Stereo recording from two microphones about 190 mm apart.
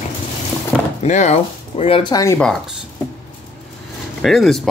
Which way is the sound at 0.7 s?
5° right (ahead or behind).